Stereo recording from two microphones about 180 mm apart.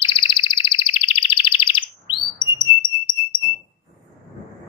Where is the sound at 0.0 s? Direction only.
30° left (ahead or behind).